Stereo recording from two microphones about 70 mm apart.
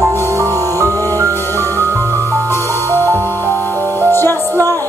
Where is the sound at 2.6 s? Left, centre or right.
Right.